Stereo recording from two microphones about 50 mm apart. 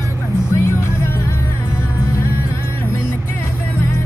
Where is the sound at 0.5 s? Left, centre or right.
Left.